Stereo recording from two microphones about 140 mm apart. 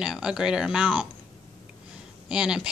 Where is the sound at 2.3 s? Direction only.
5° right (ahead or behind).